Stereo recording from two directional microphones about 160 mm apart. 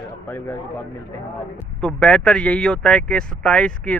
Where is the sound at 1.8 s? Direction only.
5° left (ahead or behind).